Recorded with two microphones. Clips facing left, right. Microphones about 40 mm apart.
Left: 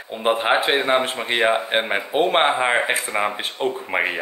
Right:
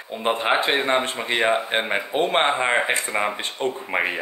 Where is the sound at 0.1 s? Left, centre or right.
Centre.